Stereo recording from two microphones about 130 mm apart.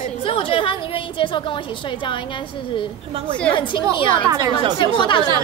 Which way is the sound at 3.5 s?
40° left (ahead or behind).